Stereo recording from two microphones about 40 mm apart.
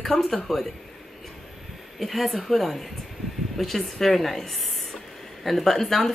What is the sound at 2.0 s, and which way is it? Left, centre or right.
Speech, centre.